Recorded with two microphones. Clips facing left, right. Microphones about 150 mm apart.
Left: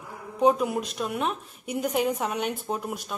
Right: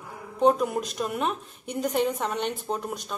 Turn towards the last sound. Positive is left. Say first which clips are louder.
# even
turn(degrees=5)  # may be behind; listen again after turning